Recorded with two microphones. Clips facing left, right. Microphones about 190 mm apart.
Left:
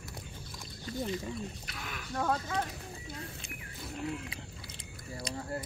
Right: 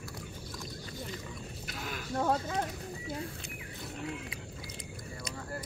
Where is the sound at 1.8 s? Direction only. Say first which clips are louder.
Right 2 dB; 40° right (ahead or behind).